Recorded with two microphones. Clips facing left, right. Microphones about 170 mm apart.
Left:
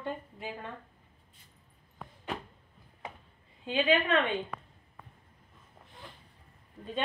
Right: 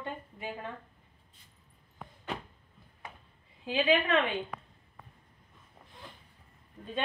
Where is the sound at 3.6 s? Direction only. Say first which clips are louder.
Even; 5° right (ahead or behind).